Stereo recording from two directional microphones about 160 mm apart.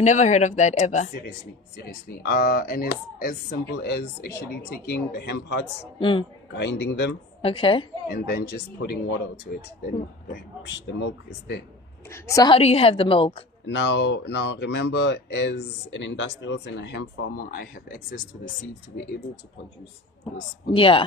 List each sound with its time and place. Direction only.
0.0 s speech: 45° left (ahead or behind)
1.8 s speech: 70° left (ahead or behind)
4.8 s speech: 90° left
5.9 s a woman's voice: 30° left (ahead or behind)
6.5 s speech: 90° left
7.4 s a woman's voice: 35° left (ahead or behind)
8.1 s speech: 80° left
10.3 s speech: 90° left
12.1 s a woman's voice: 20° left (ahead or behind)
12.5 s a woman's voice: 40° left (ahead or behind)
13.7 s speech: 90° left; by 18.2 s 60° left (ahead or behind)
20.7 s a woman's voice: 35° left (ahead or behind)